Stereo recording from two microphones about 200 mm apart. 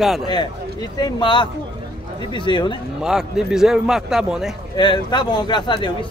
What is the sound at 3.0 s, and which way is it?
Speech, 5° right (ahead or behind).